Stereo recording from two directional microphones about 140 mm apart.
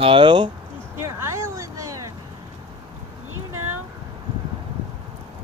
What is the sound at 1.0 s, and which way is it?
Vehicle, 20° right (ahead or behind).